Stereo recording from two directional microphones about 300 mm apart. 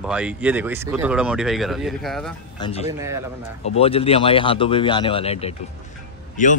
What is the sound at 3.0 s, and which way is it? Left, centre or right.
Speech, centre.